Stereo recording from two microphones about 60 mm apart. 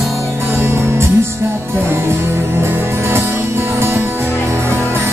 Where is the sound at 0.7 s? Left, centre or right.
Right.